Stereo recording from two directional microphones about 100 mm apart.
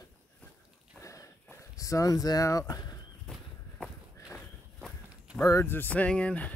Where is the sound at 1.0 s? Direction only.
30° left (ahead or behind).